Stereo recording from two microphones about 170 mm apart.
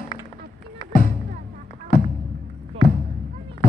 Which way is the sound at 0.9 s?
55° left (ahead or behind).